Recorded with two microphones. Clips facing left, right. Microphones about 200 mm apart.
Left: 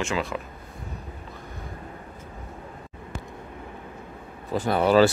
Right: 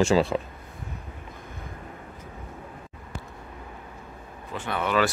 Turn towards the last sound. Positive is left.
turn(degrees=35)  # may be behind; listen again after turning